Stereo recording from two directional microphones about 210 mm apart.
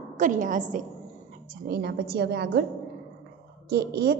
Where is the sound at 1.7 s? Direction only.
50° right (ahead or behind).